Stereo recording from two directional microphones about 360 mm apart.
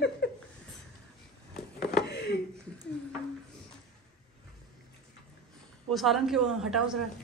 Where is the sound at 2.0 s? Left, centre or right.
Left.